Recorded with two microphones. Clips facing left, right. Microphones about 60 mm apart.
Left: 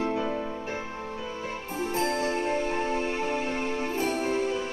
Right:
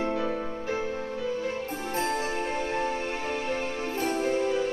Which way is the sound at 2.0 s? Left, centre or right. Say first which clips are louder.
Left 1 dB; right.